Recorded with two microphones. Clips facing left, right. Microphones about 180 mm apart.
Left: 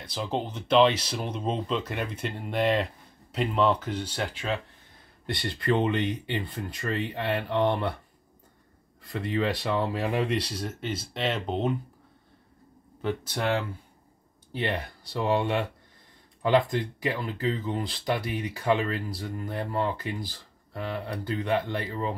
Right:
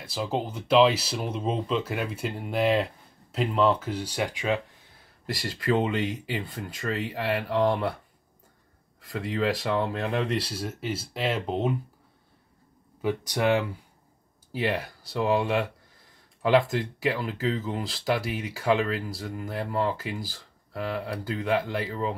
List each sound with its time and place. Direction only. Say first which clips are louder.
0.0 s speech: right 1 dB; 5° right (ahead or behind)
9.1 s speech: right 1 dB; centre (ahead or behind)
13.0 s speech: right 3 dB; 15° right (ahead or behind)
16.7 s speech: right 2 dB; centre (ahead or behind)